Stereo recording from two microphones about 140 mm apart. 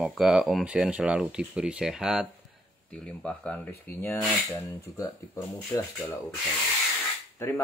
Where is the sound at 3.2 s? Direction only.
10° left (ahead or behind).